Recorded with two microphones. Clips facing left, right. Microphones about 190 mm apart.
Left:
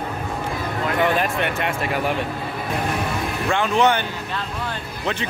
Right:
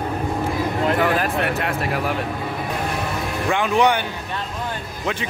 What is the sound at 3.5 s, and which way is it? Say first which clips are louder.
Speech: even; 15° right (ahead or behind).